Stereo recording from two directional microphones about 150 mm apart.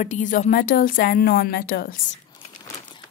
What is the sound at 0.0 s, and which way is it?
A woman's voice, 55° left (ahead or behind).